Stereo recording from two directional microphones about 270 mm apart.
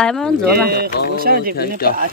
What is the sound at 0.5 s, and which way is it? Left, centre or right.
Speech, right.